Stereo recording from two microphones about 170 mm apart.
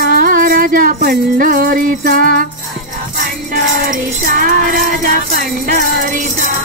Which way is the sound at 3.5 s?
55° right (ahead or behind).